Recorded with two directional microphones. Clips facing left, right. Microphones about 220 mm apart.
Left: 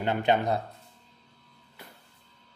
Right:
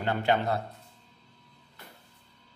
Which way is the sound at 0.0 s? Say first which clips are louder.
Left 2 dB; 20° left (ahead or behind).